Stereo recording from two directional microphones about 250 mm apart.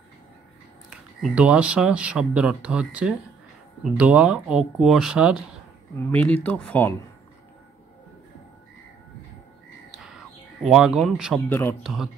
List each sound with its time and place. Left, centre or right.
0.8 s speech: centre
10.0 s a sound: centre
11.4 s speech: centre